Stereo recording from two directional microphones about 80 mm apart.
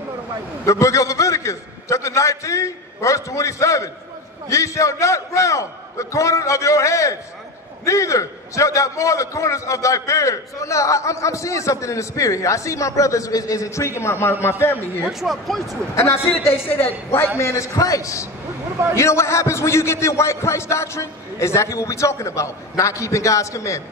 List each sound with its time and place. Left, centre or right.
0.7 s a man's voice: left
15.0 s speech: centre
15.9 s a man's voice: left